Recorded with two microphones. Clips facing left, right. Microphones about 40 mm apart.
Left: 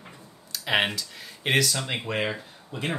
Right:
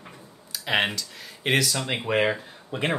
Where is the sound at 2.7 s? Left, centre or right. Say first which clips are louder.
Right 4 dB; right.